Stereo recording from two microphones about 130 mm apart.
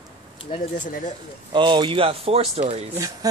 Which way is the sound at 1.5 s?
40° right (ahead or behind).